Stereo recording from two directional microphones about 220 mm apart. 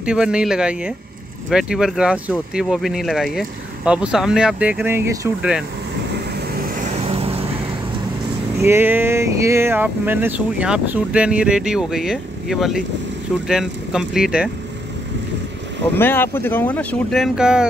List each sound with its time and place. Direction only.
0.0 s speech: 5° right (ahead or behind)
6.8 s vehicle: 30° right (ahead or behind)
8.6 s speech: 10° right (ahead or behind)
16.0 s speech: 10° left (ahead or behind)